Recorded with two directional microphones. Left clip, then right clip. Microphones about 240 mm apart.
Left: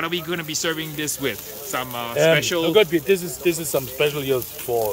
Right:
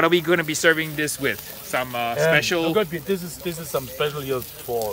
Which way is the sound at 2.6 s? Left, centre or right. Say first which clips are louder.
Left 5 dB; left.